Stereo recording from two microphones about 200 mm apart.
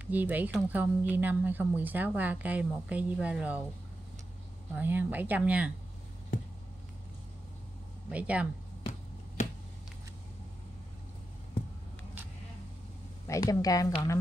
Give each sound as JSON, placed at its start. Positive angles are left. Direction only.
{"t": 0.0, "sound": "speech", "side_deg": -10}
{"t": 4.7, "sound": "speech", "side_deg": -10}
{"t": 8.1, "sound": "speech", "side_deg": -5}
{"t": 13.3, "sound": "a woman's voice", "side_deg": 20}